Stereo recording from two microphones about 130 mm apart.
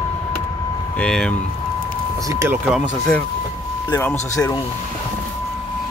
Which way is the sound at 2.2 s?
20° right (ahead or behind).